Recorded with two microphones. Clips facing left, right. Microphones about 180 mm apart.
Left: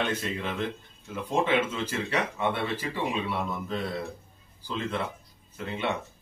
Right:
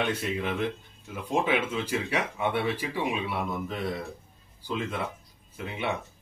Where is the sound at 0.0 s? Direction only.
10° right (ahead or behind).